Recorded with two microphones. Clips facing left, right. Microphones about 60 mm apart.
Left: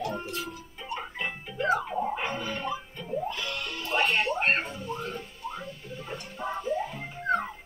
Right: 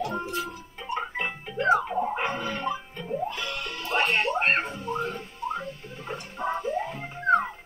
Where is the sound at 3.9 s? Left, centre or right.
Right.